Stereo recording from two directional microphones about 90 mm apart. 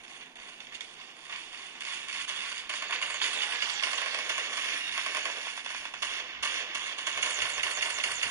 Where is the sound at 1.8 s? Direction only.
25° right (ahead or behind).